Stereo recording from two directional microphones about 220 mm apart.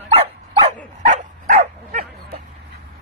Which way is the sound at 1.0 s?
35° right (ahead or behind).